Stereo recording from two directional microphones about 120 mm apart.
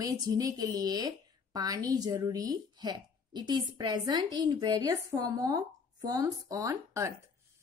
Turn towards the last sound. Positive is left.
turn(degrees=-25)  # may be behind; listen again after turning